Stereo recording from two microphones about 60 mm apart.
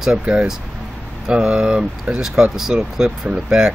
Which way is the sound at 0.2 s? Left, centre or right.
Right.